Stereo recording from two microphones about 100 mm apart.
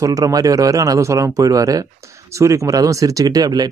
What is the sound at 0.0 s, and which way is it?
Speech, 35° right (ahead or behind).